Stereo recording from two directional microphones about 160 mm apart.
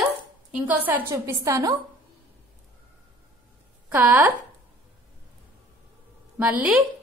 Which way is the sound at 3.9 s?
10° right (ahead or behind).